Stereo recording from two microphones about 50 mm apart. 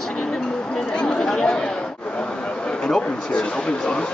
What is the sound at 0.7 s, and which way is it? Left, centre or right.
Chatter, centre.